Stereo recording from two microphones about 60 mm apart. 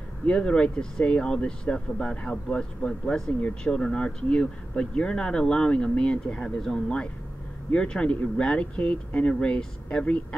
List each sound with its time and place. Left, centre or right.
0.3 s speech: centre